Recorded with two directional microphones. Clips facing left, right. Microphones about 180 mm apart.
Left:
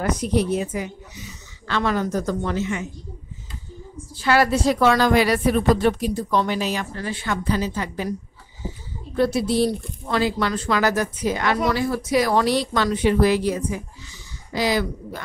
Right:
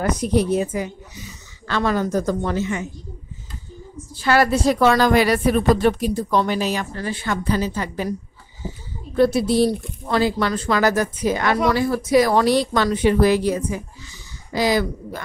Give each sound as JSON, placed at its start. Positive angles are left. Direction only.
{"t": 0.2, "sound": "a woman's voice", "side_deg": -40}
{"t": 4.2, "sound": "a woman's voice", "side_deg": -45}
{"t": 9.2, "sound": "a woman's voice", "side_deg": -40}